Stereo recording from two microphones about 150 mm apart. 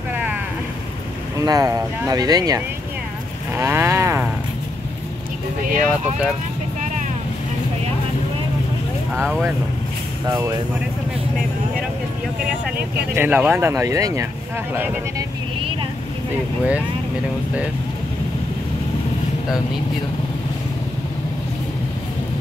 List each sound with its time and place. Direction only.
0.1 s vehicle: 10° right (ahead or behind)
1.4 s speech: 25° right (ahead or behind)
3.5 s cattle: 15° right (ahead or behind)
5.8 s speech: 5° right (ahead or behind)
9.1 s speech: 5° left (ahead or behind)
13.1 s speech: 15° right (ahead or behind)